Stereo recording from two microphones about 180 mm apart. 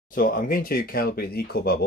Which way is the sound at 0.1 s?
50° left (ahead or behind).